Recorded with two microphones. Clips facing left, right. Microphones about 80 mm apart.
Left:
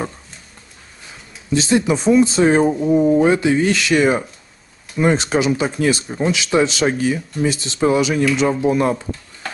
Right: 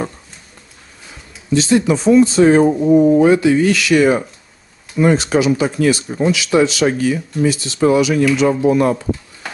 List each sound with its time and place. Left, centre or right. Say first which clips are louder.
1.5 s speech: right 3 dB; centre
2.8 s speech: right 4 dB; centre
3.3 s speech: right 3 dB; left
6.0 s speech: right 3 dB; centre
6.5 s speech: right 2 dB; left